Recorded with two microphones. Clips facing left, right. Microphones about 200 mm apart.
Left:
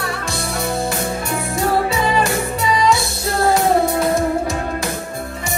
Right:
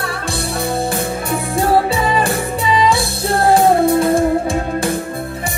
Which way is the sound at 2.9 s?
30° right (ahead or behind).